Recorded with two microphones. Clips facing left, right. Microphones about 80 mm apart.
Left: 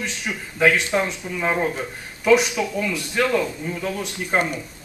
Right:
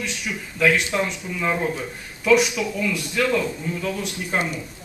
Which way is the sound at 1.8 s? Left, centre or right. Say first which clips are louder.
Left 1 dB; left.